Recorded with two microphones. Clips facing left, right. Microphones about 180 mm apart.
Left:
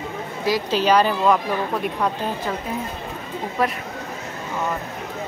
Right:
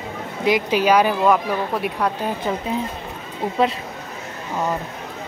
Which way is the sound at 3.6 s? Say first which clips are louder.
Right 3 dB; 25° right (ahead or behind).